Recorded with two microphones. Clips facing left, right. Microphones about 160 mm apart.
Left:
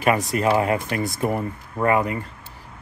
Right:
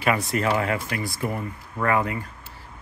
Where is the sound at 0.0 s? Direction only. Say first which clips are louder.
Left 3 dB; 40° left (ahead or behind).